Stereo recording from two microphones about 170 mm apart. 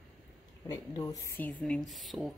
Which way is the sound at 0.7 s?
20° left (ahead or behind).